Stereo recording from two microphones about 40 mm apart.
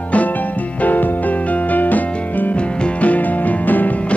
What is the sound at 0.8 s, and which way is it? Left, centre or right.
Music, left.